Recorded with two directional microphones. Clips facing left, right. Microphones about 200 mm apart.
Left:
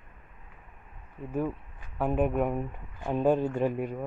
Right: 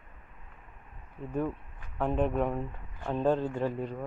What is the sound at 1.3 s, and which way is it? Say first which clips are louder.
Speech: left 1 dB; 5° left (ahead or behind).